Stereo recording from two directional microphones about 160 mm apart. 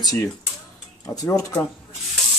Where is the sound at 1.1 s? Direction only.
20° left (ahead or behind).